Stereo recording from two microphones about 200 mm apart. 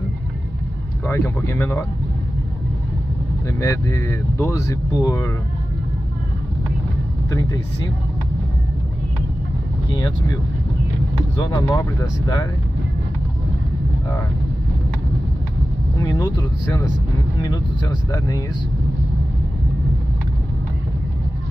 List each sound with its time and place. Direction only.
1.0 s speech: 10° left (ahead or behind)
3.4 s speech: 15° left (ahead or behind)
7.2 s speech: 20° left (ahead or behind)
11.3 s speech: 20° left (ahead or behind)
16.0 s speech: 20° left (ahead or behind)